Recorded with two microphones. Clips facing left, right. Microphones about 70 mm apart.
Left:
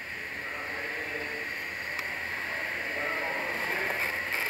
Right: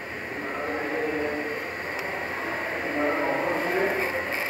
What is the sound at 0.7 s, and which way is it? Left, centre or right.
Train, right.